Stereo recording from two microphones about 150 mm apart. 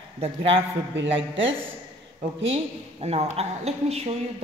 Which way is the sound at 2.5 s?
45° right (ahead or behind).